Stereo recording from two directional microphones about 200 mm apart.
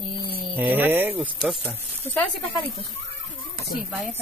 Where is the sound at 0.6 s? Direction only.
10° right (ahead or behind).